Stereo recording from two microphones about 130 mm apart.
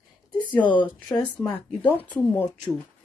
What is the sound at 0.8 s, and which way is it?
Speech, 5° left (ahead or behind).